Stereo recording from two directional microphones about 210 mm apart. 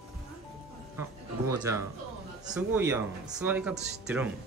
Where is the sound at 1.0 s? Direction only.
15° right (ahead or behind).